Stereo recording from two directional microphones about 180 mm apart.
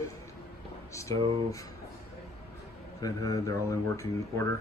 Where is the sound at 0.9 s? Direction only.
15° left (ahead or behind).